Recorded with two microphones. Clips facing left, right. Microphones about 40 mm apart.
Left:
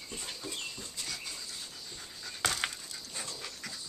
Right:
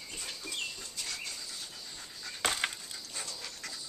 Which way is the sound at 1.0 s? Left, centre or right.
Centre.